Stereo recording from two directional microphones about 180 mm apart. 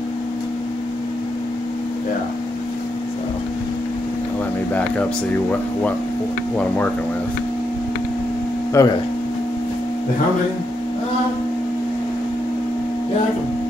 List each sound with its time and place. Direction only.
8.8 s speech: 15° left (ahead or behind)